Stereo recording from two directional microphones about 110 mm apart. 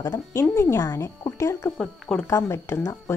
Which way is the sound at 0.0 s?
35° left (ahead or behind).